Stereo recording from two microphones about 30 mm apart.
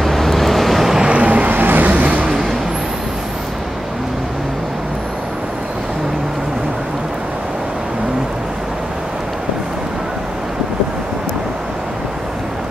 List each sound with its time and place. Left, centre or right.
0.0 s vehicle: centre
1.0 s vehicle: right
1.4 s vehicle: right